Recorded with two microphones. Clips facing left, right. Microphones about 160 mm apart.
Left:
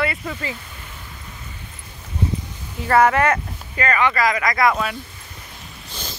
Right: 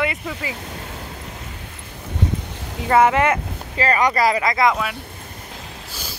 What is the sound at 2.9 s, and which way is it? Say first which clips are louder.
Speech: even; 15° right (ahead or behind).